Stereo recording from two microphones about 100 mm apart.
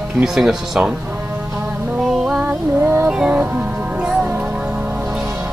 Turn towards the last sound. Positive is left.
turn(degrees=-15)  # may be behind; listen again after turning